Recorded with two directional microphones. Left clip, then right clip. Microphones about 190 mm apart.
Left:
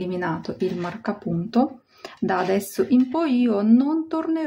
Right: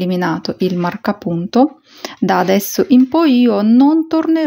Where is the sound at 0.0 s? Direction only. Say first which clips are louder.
Right 8 dB; 35° right (ahead or behind).